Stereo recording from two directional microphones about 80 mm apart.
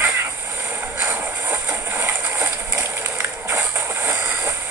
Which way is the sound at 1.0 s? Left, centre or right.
Right.